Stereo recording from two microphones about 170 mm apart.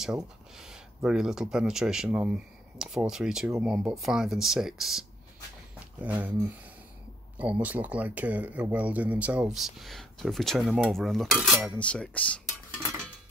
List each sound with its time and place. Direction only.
0.0 s speech: 5° right (ahead or behind)